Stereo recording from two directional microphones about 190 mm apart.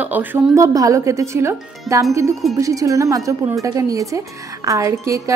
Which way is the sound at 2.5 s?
15° right (ahead or behind).